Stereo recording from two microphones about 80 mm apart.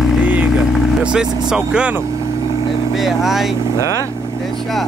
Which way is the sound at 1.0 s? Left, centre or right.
Centre.